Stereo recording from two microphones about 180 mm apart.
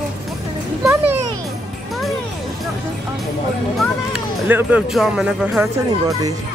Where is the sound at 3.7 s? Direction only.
5° right (ahead or behind).